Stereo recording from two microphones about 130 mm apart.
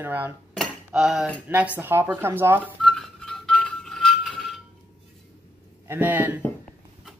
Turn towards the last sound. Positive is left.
turn(degrees=-15)  # may be behind; listen again after turning